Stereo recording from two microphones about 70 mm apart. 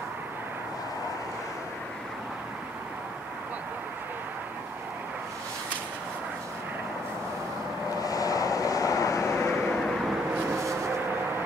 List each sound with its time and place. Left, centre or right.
8.0 s vehicle: left